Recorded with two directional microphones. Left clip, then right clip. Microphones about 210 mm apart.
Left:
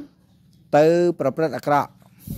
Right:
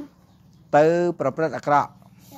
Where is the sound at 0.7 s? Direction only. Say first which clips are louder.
Left 1 dB; 65° left (ahead or behind).